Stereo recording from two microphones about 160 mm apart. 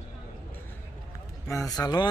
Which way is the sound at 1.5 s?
20° left (ahead or behind).